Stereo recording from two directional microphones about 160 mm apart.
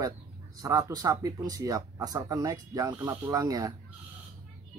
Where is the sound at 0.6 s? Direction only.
20° right (ahead or behind).